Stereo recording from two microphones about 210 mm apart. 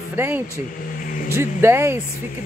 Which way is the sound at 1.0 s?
40° left (ahead or behind).